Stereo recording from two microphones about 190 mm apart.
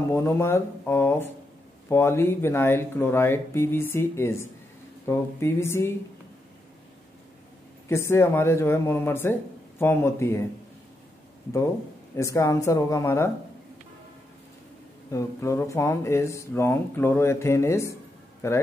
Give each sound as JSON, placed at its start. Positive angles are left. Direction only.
{"t": 0.1, "sound": "speech", "side_deg": 15}
{"t": 7.9, "sound": "speech", "side_deg": 15}
{"t": 12.2, "sound": "speech", "side_deg": 15}
{"t": 15.0, "sound": "speech", "side_deg": 15}